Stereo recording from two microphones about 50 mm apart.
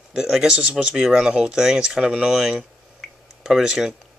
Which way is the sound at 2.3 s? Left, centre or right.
Centre.